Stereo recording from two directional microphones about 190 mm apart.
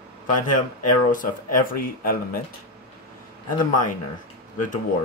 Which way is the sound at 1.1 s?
45° left (ahead or behind).